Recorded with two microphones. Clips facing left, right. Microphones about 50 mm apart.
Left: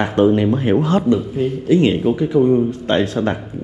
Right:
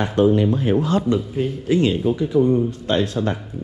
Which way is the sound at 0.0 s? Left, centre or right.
Left.